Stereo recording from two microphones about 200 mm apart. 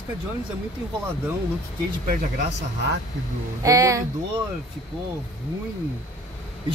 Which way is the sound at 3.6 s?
15° right (ahead or behind).